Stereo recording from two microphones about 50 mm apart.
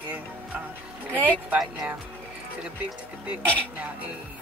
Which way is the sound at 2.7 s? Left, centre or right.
Right.